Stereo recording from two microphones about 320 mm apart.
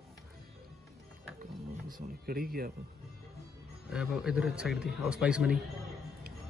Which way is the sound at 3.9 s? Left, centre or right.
Centre.